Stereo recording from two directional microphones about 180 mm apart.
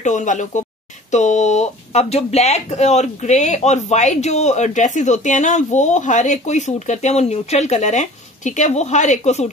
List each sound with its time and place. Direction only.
0.0 s speech: 45° left (ahead or behind)